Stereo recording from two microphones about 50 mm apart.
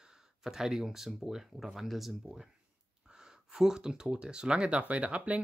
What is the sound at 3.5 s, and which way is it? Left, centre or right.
Speech, centre.